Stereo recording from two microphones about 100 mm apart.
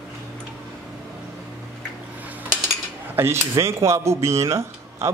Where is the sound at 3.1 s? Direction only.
25° right (ahead or behind).